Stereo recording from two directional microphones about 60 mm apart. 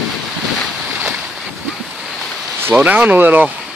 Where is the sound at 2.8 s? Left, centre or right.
Right.